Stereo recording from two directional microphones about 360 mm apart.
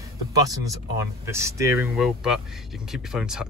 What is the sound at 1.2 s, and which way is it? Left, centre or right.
Speech, centre.